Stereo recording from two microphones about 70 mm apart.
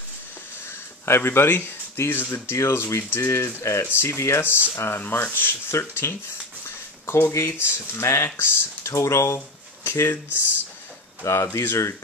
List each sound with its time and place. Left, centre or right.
0.7 s speech: left
11.2 s speech: left